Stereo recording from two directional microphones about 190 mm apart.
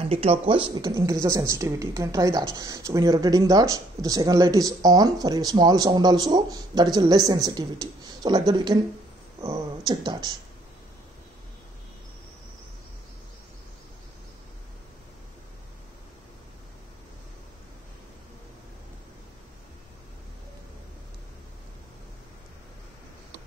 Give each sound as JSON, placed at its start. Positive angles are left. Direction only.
{"t": 0.0, "sound": "speech", "side_deg": -30}